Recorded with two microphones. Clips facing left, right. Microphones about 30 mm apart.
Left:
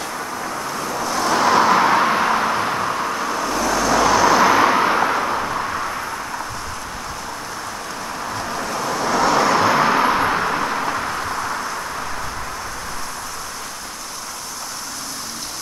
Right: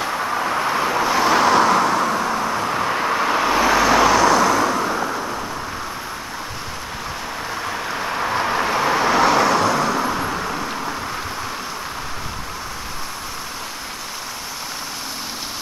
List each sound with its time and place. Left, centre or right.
0.0 s vehicle: right
1.4 s vehicle: centre
1.8 s vehicle: centre
2.9 s vehicle: right
4.0 s vehicle: centre
4.3 s vehicle: centre
7.9 s vehicle: right; by 9.6 s centre
9.6 s vehicle: centre
11.1 s vehicle: centre